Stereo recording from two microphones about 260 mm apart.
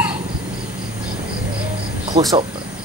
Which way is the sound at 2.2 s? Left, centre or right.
Centre.